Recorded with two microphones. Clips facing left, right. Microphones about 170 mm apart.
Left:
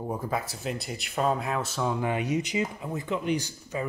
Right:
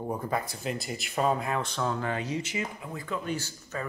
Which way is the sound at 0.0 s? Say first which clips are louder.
Even; 5° left (ahead or behind).